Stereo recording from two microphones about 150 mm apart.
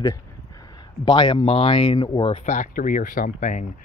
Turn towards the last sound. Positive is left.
turn(degrees=60)  # may be behind; listen again after turning